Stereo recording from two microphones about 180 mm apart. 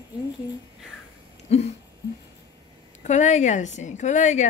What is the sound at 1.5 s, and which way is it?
Speech, 35° left (ahead or behind).